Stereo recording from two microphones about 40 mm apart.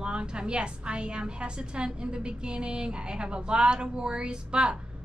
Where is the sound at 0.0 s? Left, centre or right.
Right.